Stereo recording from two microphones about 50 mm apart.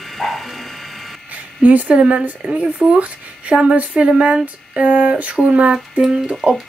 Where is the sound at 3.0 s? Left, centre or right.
Right.